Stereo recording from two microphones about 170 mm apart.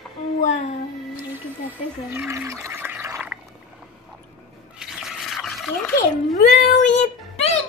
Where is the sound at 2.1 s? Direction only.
15° right (ahead or behind).